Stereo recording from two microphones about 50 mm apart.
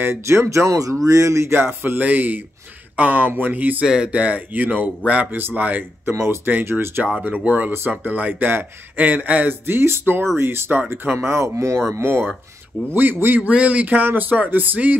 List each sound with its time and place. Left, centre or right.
0.0 s speech: right
1.5 s speech: right
1.8 s speech: right
3.8 s speech: centre
4.1 s speech: right
6.1 s speech: right
7.2 s speech: right
9.5 s speech: right
11.1 s speech: right
12.9 s speech: right
13.5 s speech: right